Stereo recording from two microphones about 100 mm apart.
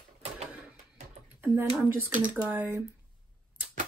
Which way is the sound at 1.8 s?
20° right (ahead or behind).